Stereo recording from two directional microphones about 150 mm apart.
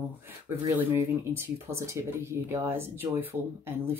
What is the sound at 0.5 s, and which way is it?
Speech, 15° right (ahead or behind).